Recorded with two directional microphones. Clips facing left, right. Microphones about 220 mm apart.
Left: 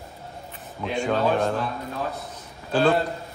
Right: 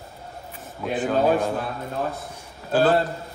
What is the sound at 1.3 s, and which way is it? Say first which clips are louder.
Speech: right 1 dB; 5° right (ahead or behind).